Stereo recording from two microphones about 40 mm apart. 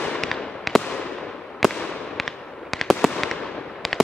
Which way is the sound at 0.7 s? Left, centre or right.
Centre.